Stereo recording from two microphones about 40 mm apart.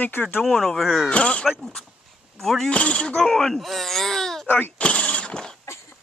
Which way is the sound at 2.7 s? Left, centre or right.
Left.